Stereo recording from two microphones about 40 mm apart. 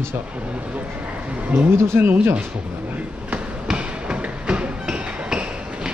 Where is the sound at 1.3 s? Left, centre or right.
Right.